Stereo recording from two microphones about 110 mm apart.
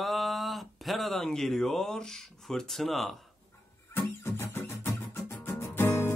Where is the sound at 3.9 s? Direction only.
20° left (ahead or behind).